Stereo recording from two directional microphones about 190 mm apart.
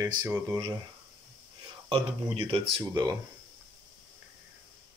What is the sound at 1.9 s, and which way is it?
Speech, 30° right (ahead or behind).